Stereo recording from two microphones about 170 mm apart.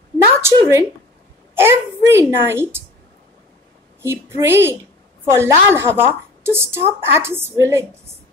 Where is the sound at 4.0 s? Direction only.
15° right (ahead or behind).